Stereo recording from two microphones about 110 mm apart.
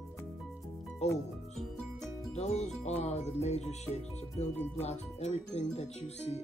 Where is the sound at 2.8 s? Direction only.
75° left (ahead or behind).